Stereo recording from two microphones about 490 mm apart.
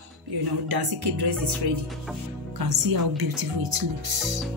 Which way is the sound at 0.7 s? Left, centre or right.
Right.